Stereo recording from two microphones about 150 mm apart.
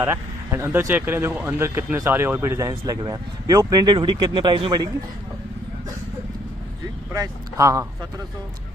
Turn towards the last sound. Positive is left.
turn(degrees=-20)  # may be behind; listen again after turning